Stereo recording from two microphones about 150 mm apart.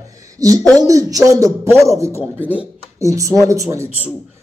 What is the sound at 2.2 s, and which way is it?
Speech, 10° right (ahead or behind).